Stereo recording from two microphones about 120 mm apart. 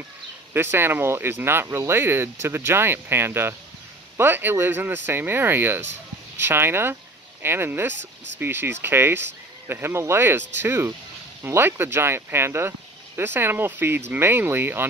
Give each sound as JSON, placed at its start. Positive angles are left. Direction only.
{"t": 0.5, "sound": "speech", "side_deg": -20}